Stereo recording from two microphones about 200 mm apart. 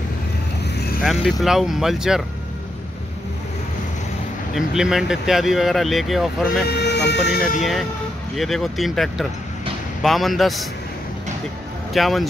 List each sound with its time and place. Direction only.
1.0 s speech: centre (ahead or behind)
4.6 s speech: centre (ahead or behind)
6.7 s speech: 55° left (ahead or behind)
8.4 s speech: centre (ahead or behind)
11.9 s speech: centre (ahead or behind)